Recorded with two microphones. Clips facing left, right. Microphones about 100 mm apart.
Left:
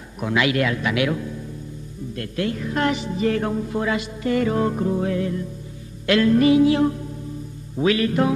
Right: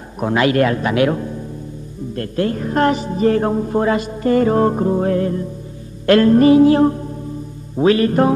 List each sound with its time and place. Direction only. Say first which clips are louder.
0.2 s a woman's voice: right 6 dB; 40° right (ahead or behind)
6.0 s music: right 6 dB; 45° right (ahead or behind)
7.7 s a woman's voice: right 6 dB; 40° right (ahead or behind)